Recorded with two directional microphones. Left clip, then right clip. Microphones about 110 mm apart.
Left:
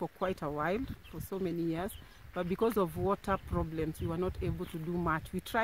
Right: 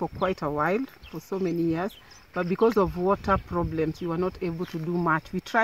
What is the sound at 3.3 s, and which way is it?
Speech, 55° left (ahead or behind).